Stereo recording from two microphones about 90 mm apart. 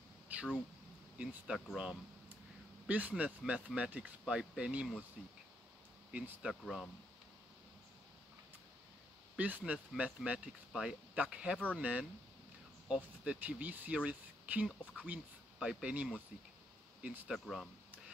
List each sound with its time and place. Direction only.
0.3 s a sound: 20° right (ahead or behind)
1.1 s speech: 10° right (ahead or behind)
2.9 s speech: 15° right (ahead or behind)
6.5 s speech: 5° left (ahead or behind)
9.4 s speech: 15° right (ahead or behind)
17.3 s speech: centre (ahead or behind)